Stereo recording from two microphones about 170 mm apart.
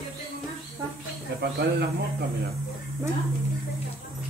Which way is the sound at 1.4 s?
65° right (ahead or behind).